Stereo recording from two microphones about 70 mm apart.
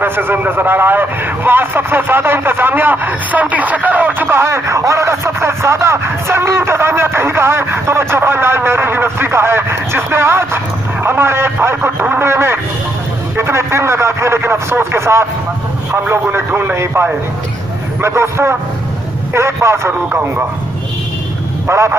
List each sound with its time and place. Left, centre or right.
0.0 s a man's voice: right
4.4 s a man's voice: right
19.9 s a man's voice: right
21.6 s speech: right